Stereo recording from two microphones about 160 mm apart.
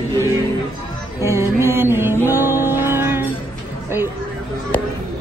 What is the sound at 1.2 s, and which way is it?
Music, 20° right (ahead or behind).